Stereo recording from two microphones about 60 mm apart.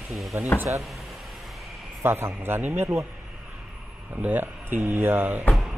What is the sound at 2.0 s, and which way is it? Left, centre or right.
Speech, right.